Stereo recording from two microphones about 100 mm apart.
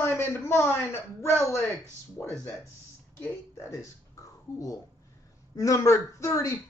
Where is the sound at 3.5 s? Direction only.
30° left (ahead or behind).